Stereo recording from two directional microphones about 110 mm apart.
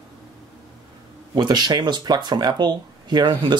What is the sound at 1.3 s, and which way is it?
Speech, 40° right (ahead or behind).